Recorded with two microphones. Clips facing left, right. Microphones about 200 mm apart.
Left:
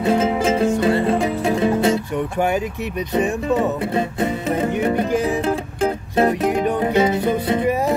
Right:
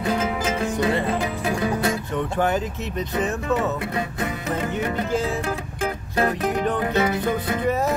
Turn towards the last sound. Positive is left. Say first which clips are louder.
# left 4 dB
turn(degrees=25)  # may be behind; listen again after turning